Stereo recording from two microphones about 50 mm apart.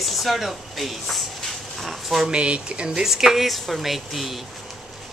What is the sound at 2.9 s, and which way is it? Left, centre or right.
Speech, centre.